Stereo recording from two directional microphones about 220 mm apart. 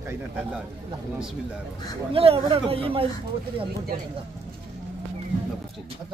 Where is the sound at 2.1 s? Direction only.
25° right (ahead or behind).